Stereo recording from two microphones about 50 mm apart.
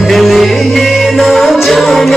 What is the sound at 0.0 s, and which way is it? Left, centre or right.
Music, centre.